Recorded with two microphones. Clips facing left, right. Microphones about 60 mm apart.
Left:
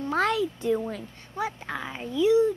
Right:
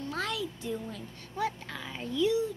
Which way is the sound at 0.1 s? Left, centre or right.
Left.